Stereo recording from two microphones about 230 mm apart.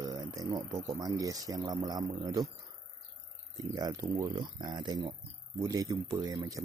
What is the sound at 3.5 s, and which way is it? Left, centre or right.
Speech, centre.